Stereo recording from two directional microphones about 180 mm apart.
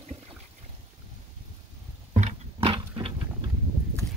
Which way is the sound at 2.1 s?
40° right (ahead or behind).